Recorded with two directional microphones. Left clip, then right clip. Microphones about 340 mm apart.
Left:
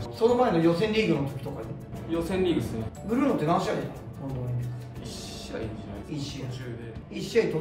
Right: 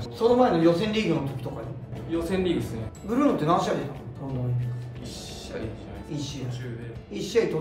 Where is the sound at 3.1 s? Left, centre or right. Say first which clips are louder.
Right 2 dB; centre.